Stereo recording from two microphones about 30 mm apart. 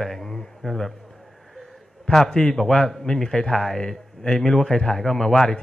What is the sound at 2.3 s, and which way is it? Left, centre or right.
A man's voice, left.